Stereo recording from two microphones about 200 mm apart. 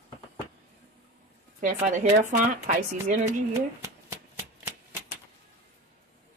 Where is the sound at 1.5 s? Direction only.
40° right (ahead or behind).